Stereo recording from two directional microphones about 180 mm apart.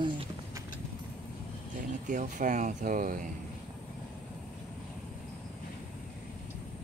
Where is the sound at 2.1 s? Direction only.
45° right (ahead or behind).